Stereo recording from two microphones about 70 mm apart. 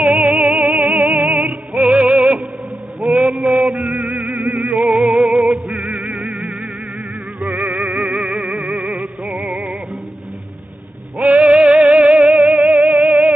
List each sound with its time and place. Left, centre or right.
0.0 s music: centre
0.6 s music: right
1.8 s music: centre
3.2 s male singing: centre
3.9 s music: centre
7.9 s music: centre
11.2 s music: centre
11.6 s music: centre
11.9 s music: centre
12.5 s music: centre